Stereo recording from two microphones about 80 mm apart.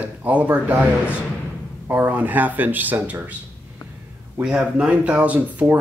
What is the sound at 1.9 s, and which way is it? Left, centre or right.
Speech, right.